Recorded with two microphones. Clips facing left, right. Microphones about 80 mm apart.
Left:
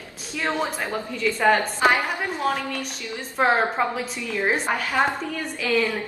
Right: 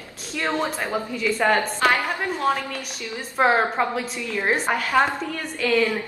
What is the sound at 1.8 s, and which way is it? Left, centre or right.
Speech, centre.